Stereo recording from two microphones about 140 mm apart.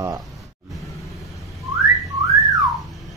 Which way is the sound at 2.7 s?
Centre (ahead or behind).